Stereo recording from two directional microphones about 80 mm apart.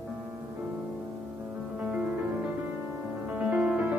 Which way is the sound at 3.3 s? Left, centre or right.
Centre.